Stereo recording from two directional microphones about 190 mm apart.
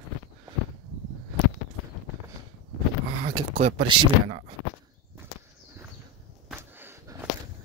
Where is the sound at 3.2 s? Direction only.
30° right (ahead or behind).